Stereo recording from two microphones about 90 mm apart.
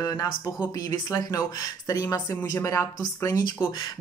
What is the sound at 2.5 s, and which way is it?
Speech, 30° left (ahead or behind).